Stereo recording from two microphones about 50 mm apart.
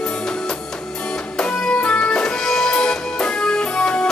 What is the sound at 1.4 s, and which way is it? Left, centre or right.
Music, centre.